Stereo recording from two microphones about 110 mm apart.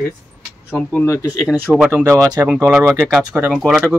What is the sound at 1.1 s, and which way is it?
Speech, 30° left (ahead or behind).